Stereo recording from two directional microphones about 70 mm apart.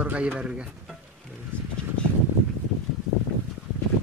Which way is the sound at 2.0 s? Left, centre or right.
Centre.